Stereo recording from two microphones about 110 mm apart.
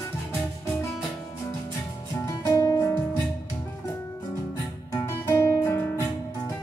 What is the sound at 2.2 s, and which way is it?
Music, 25° left (ahead or behind).